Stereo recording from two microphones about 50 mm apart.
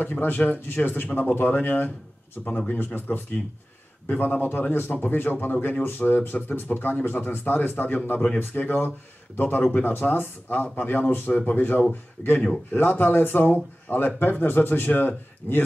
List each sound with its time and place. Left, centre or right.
0.0 s speech: left
2.4 s speech: centre
2.8 s speech: left
9.9 s speech: left